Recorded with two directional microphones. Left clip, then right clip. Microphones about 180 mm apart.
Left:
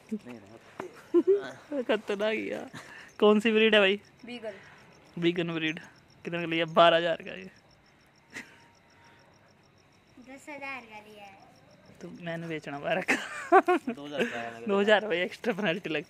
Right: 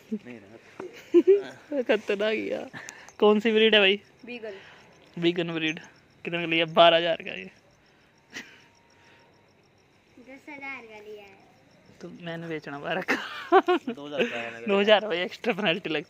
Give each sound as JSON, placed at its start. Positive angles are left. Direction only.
{"t": 1.4, "sound": "a man's voice", "side_deg": -5}
{"t": 2.9, "sound": "speech", "side_deg": 10}
{"t": 4.2, "sound": "speech", "side_deg": 65}
{"t": 5.2, "sound": "a man's voice", "side_deg": 5}
{"t": 8.3, "sound": "a sound", "side_deg": 0}
{"t": 10.4, "sound": "a woman's voice", "side_deg": 45}
{"t": 12.0, "sound": "speech", "side_deg": 5}
{"t": 13.9, "sound": "a man's voice", "side_deg": -5}